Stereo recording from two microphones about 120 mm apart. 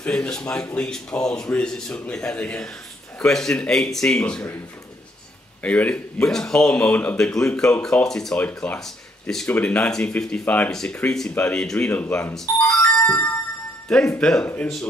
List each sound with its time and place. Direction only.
0.0 s speech: 5° left (ahead or behind)
5.6 s speech: 10° left (ahead or behind)
12.8 s music: 25° left (ahead or behind)
14.1 s speech: 10° left (ahead or behind)